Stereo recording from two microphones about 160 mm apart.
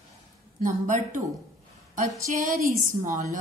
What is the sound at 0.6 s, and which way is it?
Speech, 55° right (ahead or behind).